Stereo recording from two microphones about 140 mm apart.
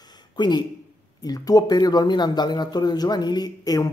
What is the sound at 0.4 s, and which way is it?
Speech, 30° left (ahead or behind).